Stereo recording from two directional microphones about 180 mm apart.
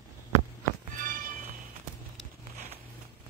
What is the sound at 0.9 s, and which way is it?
Music, 50° right (ahead or behind).